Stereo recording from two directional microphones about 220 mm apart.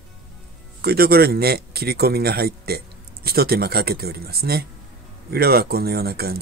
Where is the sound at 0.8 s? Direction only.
45° right (ahead or behind).